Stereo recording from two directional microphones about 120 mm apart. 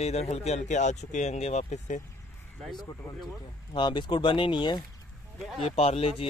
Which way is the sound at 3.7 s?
40° left (ahead or behind).